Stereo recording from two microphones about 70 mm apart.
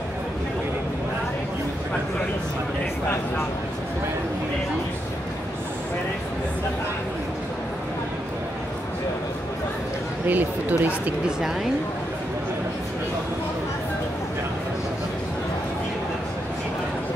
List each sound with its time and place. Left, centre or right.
10.2 s speech: right